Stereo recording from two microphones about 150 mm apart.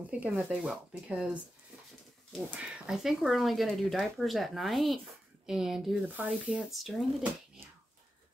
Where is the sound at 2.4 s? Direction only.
10° right (ahead or behind).